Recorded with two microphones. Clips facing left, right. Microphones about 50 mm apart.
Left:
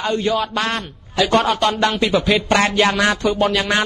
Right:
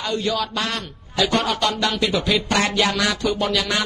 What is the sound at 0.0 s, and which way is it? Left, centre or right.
A man's voice, left.